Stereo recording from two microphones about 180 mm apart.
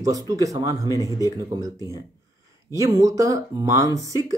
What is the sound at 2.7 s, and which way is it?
Speech, 20° right (ahead or behind).